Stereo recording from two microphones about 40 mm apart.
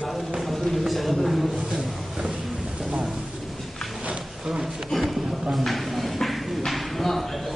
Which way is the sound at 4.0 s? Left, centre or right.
Right.